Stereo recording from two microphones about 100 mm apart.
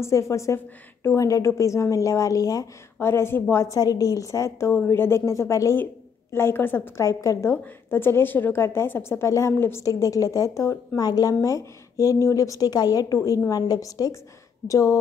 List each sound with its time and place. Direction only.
0.0 s a woman's voice: 30° left (ahead or behind)
11.0 s a woman's voice: 40° left (ahead or behind)